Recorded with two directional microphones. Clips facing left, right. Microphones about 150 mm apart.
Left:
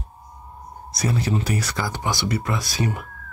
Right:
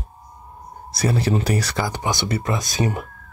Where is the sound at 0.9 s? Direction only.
30° right (ahead or behind).